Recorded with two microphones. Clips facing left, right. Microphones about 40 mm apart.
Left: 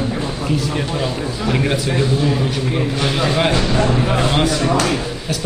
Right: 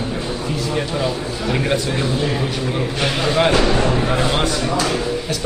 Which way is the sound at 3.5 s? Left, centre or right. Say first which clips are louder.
Right 1 dB; right.